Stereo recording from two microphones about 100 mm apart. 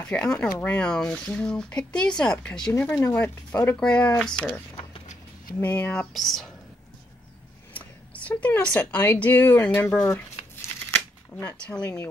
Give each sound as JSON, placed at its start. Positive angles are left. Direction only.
{"t": 0.1, "sound": "speech", "side_deg": 10}
{"t": 5.6, "sound": "speech", "side_deg": 15}
{"t": 6.1, "sound": "speech", "side_deg": 0}
{"t": 7.7, "sound": "speech", "side_deg": 15}
{"t": 11.3, "sound": "speech", "side_deg": 15}